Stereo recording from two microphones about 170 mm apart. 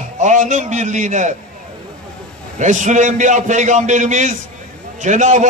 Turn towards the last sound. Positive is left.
turn(degrees=-45)  # may be behind; listen again after turning